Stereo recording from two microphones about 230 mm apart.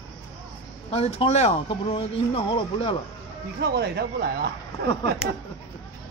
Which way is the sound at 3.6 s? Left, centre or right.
Right.